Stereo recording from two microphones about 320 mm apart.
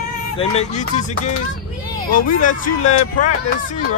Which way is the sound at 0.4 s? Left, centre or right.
Centre.